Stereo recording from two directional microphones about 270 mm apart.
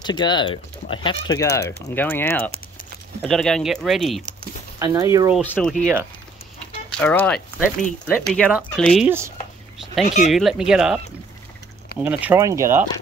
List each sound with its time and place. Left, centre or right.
0.0 s speech: centre
1.6 s speech: left
2.0 s speech: centre
4.7 s speech: centre
5.4 s speech: centre
6.9 s speech: centre
10.0 s speech: left
10.3 s speech: centre
12.0 s speech: centre